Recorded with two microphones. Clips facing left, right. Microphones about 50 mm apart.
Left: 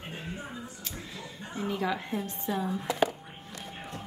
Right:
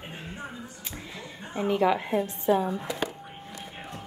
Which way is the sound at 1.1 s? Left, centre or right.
Right.